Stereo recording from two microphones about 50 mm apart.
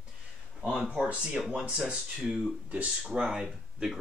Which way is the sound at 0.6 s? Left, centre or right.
Centre.